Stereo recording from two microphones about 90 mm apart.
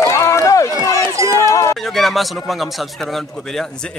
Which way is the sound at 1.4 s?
35° left (ahead or behind).